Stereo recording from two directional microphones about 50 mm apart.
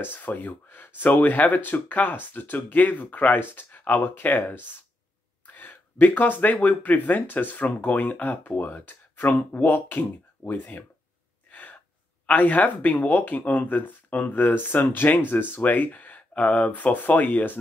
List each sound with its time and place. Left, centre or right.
0.0 s speech: left
11.5 s gasp: left
12.3 s speech: left